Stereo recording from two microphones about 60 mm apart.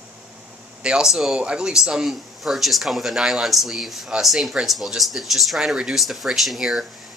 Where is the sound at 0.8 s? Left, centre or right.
Centre.